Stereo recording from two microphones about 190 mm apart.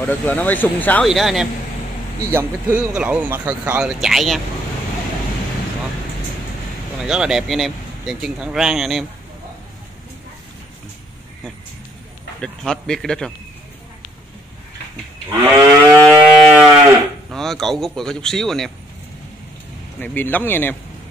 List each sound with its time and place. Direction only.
0.0 s speech: 10° left (ahead or behind)
7.0 s speech: 5° right (ahead or behind)
12.4 s speech: 5° left (ahead or behind)
15.4 s moo: 15° right (ahead or behind)
16.1 s a sound: 5° right (ahead or behind)
17.3 s speech: centre (ahead or behind)
20.0 s speech: 10° left (ahead or behind)